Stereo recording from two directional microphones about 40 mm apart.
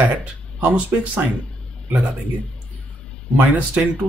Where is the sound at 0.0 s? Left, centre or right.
Right.